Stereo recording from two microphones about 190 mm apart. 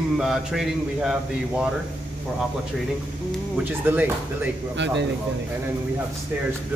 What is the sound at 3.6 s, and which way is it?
Speech, 10° right (ahead or behind).